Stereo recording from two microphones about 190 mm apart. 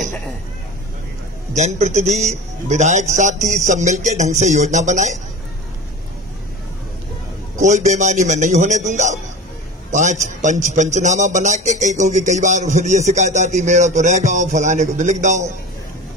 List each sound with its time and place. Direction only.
1.5 s a man's voice: 35° right (ahead or behind)
7.6 s a man's voice: 40° right (ahead or behind)